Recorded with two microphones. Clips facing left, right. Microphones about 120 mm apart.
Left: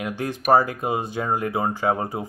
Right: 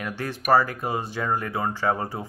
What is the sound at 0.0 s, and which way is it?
Speech, 20° left (ahead or behind).